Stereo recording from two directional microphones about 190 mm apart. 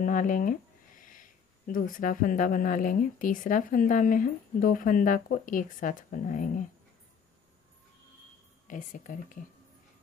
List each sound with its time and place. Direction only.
0.0 s speech: 45° left (ahead or behind)
8.6 s speech: 45° left (ahead or behind)